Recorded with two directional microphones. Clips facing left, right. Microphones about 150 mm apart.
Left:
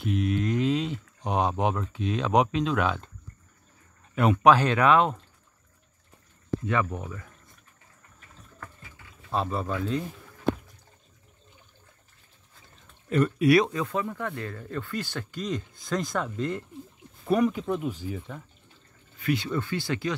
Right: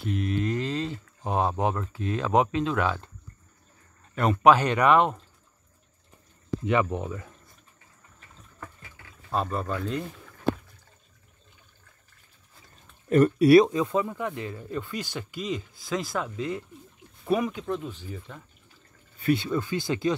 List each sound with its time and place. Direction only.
0.0 s speech: centre (ahead or behind)
4.1 s a man's voice: 5° left (ahead or behind)
4.5 s speech: 10° right (ahead or behind)
6.6 s speech: 20° right (ahead or behind)
9.3 s speech: centre (ahead or behind)
13.1 s speech: 40° right (ahead or behind); by 17.7 s centre (ahead or behind)
17.7 s speech: 10° left (ahead or behind)
19.2 s speech: 25° right (ahead or behind)